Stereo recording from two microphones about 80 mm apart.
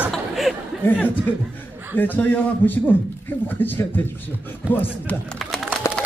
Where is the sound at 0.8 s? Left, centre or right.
Left.